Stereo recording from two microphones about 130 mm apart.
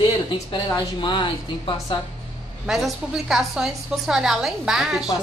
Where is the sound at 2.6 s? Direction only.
5° right (ahead or behind).